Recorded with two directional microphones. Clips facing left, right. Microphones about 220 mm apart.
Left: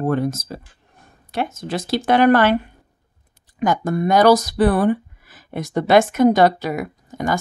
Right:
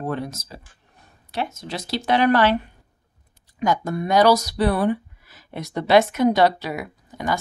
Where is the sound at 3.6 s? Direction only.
50° left (ahead or behind).